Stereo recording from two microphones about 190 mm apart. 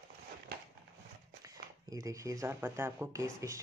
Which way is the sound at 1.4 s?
20° right (ahead or behind).